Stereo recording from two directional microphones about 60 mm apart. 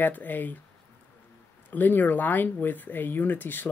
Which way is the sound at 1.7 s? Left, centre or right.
Left.